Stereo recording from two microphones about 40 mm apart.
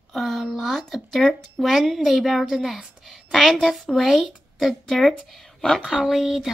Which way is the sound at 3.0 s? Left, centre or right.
Centre.